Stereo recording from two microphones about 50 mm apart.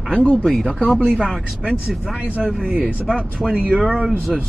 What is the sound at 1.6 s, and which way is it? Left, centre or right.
A man's voice, centre.